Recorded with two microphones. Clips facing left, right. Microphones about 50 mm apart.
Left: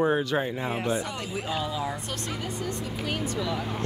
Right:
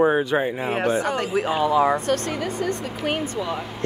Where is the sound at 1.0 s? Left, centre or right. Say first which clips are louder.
Right 10 dB; right.